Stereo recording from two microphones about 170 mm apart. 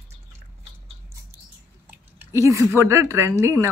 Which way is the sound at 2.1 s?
15° right (ahead or behind).